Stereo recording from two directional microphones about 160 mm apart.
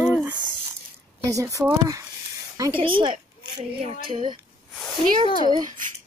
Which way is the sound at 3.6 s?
35° right (ahead or behind).